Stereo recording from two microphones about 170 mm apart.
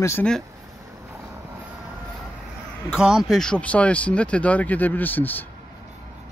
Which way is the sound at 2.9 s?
5° right (ahead or behind).